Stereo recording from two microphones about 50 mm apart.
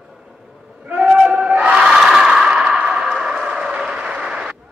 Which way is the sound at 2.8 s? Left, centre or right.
Right.